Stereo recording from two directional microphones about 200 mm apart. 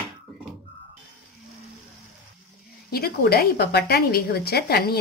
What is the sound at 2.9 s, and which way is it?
Speech, 50° left (ahead or behind).